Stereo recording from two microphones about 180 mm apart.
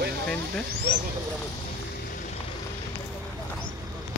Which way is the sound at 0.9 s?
65° right (ahead or behind).